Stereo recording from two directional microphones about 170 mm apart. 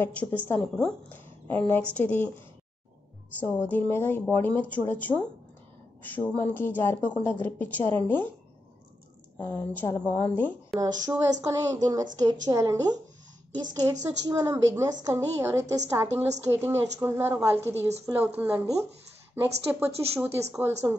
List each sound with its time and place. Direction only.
0.0 s a woman's voice: 10° left (ahead or behind)
3.4 s a woman's voice: 10° left (ahead or behind)
9.4 s a woman's voice: 10° left (ahead or behind)
10.8 s a woman's voice: 25° right (ahead or behind)